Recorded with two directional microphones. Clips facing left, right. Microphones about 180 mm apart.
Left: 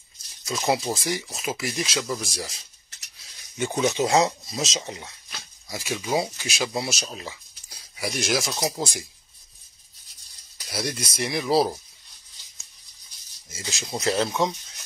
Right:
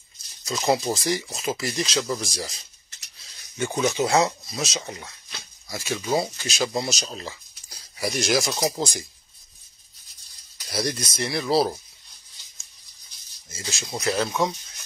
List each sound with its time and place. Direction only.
0.5 s speech: 5° left (ahead or behind)
3.5 s speech: 20° left (ahead or behind); by 9.0 s 5° left (ahead or behind)
10.7 s speech: 5° left (ahead or behind)
13.7 s speech: 20° left (ahead or behind)